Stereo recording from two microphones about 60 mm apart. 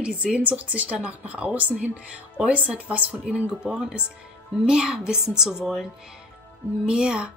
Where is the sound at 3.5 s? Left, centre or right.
Centre.